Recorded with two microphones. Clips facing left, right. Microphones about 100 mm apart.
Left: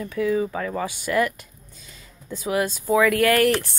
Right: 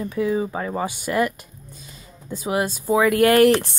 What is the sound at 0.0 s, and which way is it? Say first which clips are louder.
Speech: even; 20° right (ahead or behind).